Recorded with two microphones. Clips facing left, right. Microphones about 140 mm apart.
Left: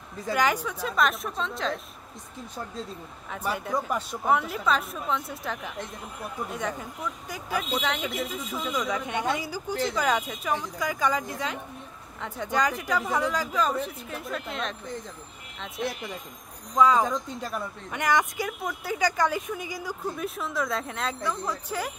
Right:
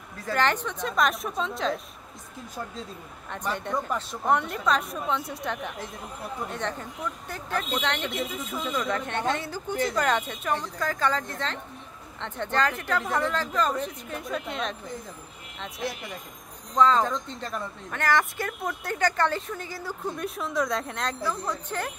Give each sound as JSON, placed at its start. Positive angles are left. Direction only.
{"t": 0.3, "sound": "speech", "side_deg": 10}
{"t": 3.3, "sound": "speech", "side_deg": 5}
{"t": 16.7, "sound": "speech", "side_deg": 10}